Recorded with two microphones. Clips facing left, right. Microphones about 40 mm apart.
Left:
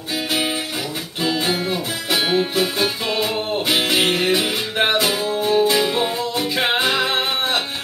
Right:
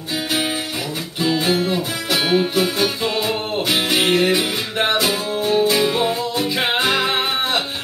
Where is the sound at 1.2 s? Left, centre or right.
Centre.